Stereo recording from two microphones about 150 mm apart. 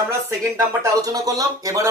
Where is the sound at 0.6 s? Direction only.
20° right (ahead or behind).